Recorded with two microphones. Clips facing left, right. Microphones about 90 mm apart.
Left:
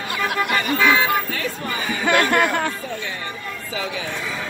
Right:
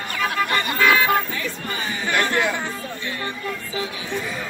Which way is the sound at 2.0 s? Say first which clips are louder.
Left 4 dB; 65° left (ahead or behind).